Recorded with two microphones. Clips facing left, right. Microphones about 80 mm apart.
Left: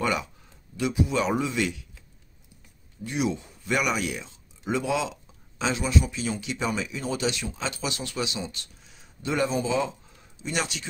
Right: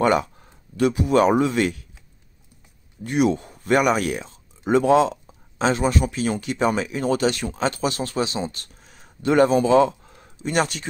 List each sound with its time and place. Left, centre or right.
0.0 s speech: right
3.0 s speech: right